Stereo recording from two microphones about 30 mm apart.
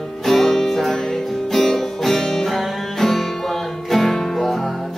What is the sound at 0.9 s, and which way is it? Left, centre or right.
Music, centre.